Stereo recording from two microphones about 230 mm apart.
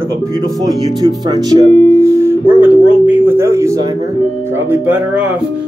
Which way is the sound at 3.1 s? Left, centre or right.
Centre.